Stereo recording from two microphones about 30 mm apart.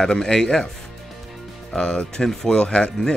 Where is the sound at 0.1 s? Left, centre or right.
Left.